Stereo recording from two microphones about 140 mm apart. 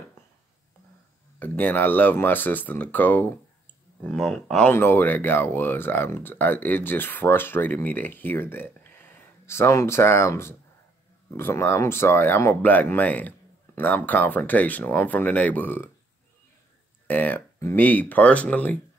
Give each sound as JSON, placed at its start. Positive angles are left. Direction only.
{"t": 1.4, "sound": "speech", "side_deg": 15}
{"t": 17.1, "sound": "speech", "side_deg": 15}